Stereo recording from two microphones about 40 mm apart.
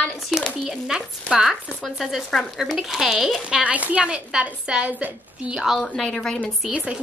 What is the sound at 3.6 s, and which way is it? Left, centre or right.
Speech, right.